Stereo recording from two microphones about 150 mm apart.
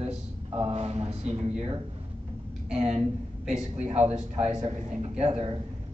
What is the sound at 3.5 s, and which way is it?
Speech, 5° right (ahead or behind).